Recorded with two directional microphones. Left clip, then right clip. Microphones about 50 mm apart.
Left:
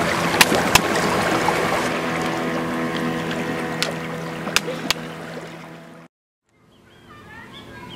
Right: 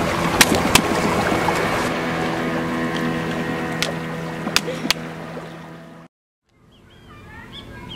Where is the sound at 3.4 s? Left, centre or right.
Right.